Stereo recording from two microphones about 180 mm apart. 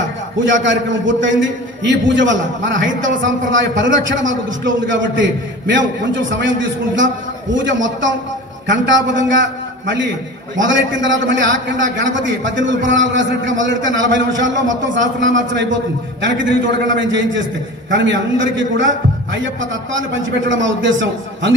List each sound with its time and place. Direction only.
0.5 s a man's voice: 90° right
7.5 s a man's voice: 90° right